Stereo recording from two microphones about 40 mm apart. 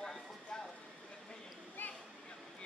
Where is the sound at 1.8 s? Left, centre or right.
Left.